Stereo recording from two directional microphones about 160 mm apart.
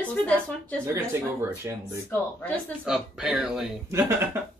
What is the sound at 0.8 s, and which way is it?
Speech, 15° right (ahead or behind).